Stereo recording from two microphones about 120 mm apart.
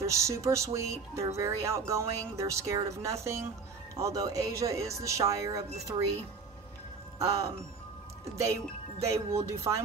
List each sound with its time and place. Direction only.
0.0 s speech: 25° right (ahead or behind)
7.2 s speech: 25° right (ahead or behind)
9.0 s speech: 25° right (ahead or behind)